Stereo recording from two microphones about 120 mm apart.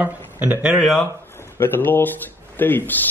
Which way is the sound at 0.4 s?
10° right (ahead or behind).